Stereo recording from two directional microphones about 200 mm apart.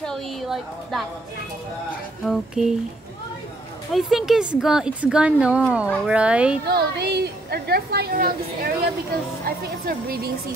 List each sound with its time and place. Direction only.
0.0 s a woman's voice: centre (ahead or behind)
2.2 s a woman's voice: centre (ahead or behind)
3.9 s a woman's voice: centre (ahead or behind)
6.7 s a woman's voice: 55° right (ahead or behind)
9.4 s a woman's voice: 50° right (ahead or behind)